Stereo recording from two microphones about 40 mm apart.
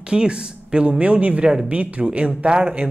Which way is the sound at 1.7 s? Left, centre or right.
Right.